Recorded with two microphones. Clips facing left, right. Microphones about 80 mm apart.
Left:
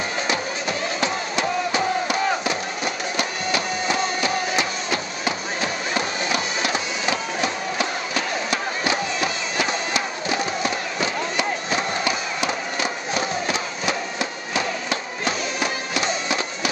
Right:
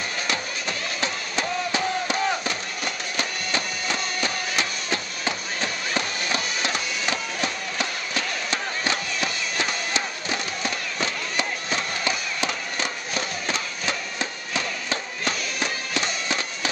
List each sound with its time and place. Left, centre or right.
0.3 s music: centre
3.9 s chop: centre
6.7 s printer: centre
8.5 s a sound: centre
10.6 s a sound: centre
14.5 s music: centre